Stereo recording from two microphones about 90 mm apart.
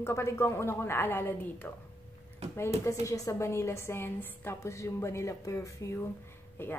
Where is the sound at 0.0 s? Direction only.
30° left (ahead or behind).